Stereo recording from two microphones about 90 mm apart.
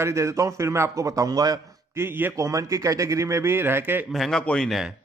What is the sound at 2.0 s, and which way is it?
Speech, 25° right (ahead or behind).